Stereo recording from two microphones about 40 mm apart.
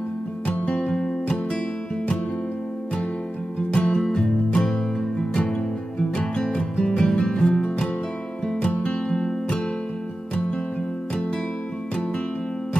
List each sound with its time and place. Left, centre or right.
0.7 s music: left
3.7 s music: left
9.1 s music: left